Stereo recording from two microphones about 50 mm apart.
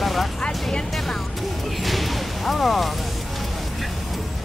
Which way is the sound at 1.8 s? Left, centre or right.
Centre.